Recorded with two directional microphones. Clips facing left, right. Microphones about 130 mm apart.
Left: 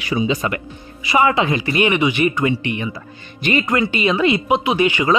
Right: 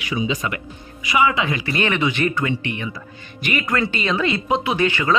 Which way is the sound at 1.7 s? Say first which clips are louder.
Left 4 dB; 15° left (ahead or behind).